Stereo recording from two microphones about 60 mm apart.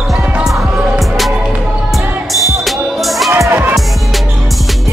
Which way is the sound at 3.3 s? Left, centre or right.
Right.